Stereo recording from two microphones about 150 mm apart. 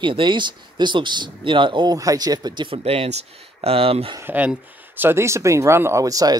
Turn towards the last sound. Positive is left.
turn(degrees=-25)  # may be behind; listen again after turning